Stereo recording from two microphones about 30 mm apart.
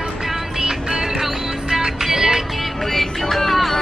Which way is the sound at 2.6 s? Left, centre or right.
Centre.